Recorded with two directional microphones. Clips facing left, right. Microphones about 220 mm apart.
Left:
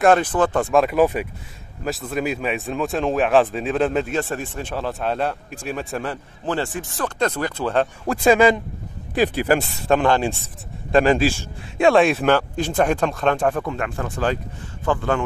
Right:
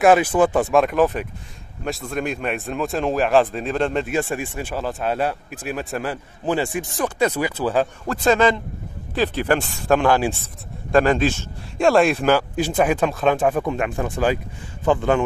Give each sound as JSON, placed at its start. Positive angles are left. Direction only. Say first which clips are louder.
{"t": 0.0, "sound": "speech", "louder": "right 2 dB", "side_deg": -5}
{"t": 4.1, "sound": "speech", "louder": "right 1 dB", "side_deg": -10}
{"t": 8.1, "sound": "a man's voice", "louder": "left 3 dB", "side_deg": 10}